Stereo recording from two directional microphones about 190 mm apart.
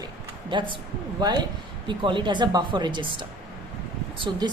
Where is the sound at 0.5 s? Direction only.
25° right (ahead or behind).